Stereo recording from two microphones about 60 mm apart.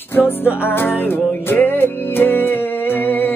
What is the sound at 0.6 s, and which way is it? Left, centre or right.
Music, left.